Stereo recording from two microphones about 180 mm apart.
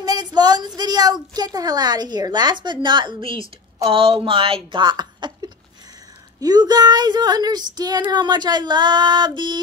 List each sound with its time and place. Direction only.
0.0 s a woman's voice: 20° right (ahead or behind)